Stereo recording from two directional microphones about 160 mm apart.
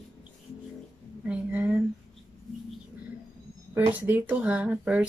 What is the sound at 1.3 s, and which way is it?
Speech, 10° right (ahead or behind).